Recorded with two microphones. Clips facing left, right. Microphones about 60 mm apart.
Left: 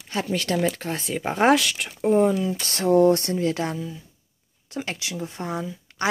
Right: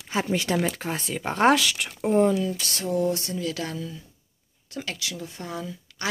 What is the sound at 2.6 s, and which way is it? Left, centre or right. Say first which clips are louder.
Speech: left 8 dB; left.